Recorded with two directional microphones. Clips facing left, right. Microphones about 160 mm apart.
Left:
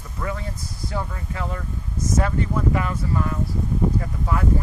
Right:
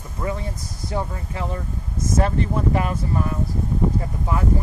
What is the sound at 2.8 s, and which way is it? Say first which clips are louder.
Speech: right 1 dB; 30° right (ahead or behind).